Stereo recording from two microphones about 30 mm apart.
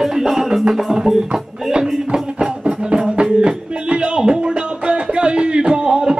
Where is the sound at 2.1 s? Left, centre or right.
Right.